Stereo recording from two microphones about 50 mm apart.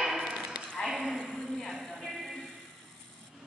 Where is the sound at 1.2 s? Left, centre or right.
Centre.